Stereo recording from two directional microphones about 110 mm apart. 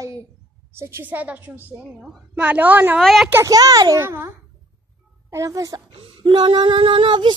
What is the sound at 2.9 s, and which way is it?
Speech, centre (ahead or behind).